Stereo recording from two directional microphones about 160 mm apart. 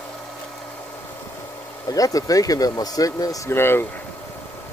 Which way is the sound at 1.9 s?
20° left (ahead or behind).